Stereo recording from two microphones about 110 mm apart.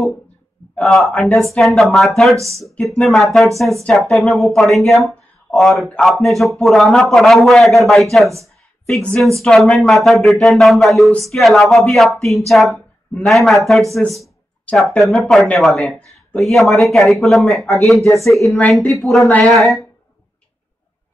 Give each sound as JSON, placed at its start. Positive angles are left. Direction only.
{"t": 0.7, "sound": "speech", "side_deg": 0}